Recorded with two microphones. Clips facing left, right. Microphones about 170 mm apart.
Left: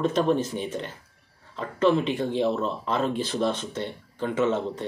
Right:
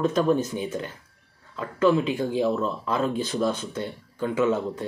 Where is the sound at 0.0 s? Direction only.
30° left (ahead or behind).